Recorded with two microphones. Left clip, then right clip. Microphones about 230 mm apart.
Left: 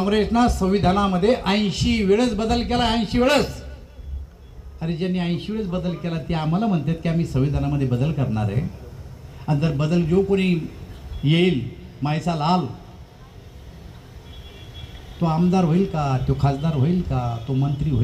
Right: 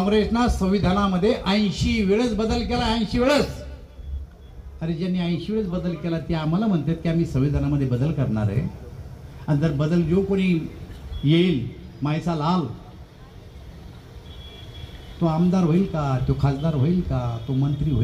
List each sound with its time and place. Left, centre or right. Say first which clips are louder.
0.0 s a man's voice: left 2 dB; left
4.7 s a man's voice: left 2 dB; left
12.0 s a man's voice: left 2 dB; left
15.1 s a man's voice: left 2 dB; left